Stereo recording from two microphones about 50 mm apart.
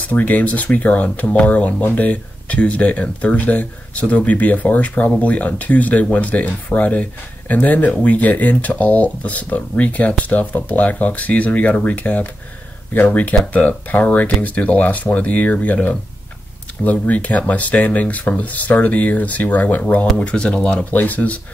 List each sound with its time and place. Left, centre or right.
0.1 s speech: left
18.5 s speech: left; by 20.8 s centre
20.9 s speech: left